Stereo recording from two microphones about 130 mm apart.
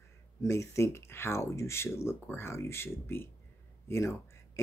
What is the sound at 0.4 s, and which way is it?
Speech, 20° left (ahead or behind).